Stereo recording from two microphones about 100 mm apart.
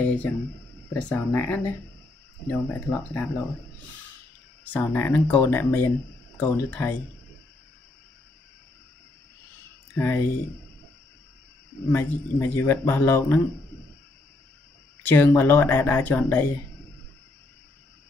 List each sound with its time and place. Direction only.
0.0 s a sound: 15° left (ahead or behind)
1.0 s speech: 15° left (ahead or behind)
4.7 s a man's voice: 20° left (ahead or behind)
9.9 s a man's voice: 20° left (ahead or behind)
11.9 s a man's voice: 20° left (ahead or behind)
15.0 s a man's voice: 20° left (ahead or behind)